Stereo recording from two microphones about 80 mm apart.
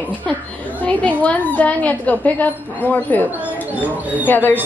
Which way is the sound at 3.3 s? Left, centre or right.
Centre.